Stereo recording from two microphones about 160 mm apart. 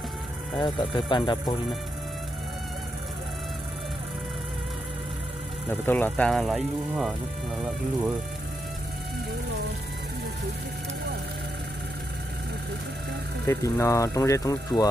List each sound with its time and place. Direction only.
0.6 s speech: 30° left (ahead or behind)
5.7 s speech: 10° left (ahead or behind)
13.5 s speech: 20° left (ahead or behind)